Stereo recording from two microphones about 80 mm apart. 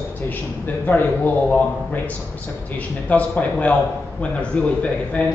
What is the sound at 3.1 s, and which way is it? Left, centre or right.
A man's voice, centre.